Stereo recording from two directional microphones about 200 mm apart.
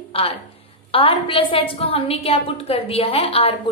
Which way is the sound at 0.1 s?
30° left (ahead or behind).